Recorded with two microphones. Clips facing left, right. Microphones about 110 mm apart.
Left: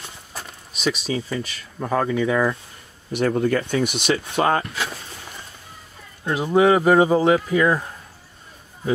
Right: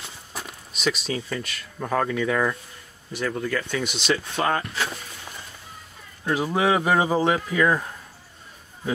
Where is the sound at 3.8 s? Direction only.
55° left (ahead or behind).